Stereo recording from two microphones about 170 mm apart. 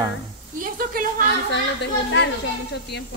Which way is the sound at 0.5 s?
55° right (ahead or behind).